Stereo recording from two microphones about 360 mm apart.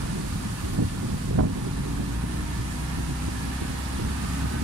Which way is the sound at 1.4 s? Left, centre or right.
Right.